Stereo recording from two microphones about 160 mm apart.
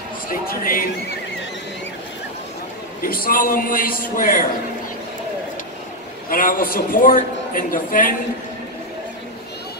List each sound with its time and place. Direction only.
0.3 s a woman's voice: 65° left (ahead or behind)
3.0 s a woman's voice: 65° left (ahead or behind)
6.2 s a woman's voice: 60° left (ahead or behind)